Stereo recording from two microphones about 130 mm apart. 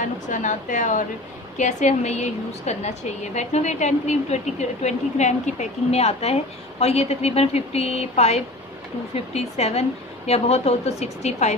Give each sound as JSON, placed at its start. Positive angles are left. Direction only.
{"t": 0.3, "sound": "speech", "side_deg": 75}
{"t": 1.6, "sound": "a woman's voice", "side_deg": 65}